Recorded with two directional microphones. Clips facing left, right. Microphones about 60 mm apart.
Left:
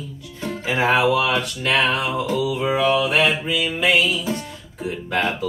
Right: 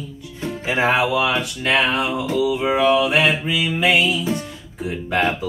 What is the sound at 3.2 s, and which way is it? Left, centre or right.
Mantra, centre.